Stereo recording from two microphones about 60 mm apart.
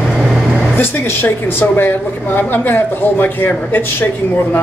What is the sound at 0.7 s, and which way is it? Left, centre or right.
A woman's voice, left.